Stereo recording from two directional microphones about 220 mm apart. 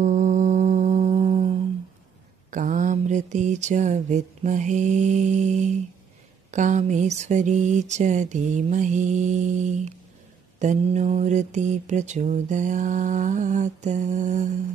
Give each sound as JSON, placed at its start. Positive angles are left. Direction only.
{"t": 0.0, "sound": "music", "side_deg": -35}
{"t": 2.5, "sound": "mantra", "side_deg": -35}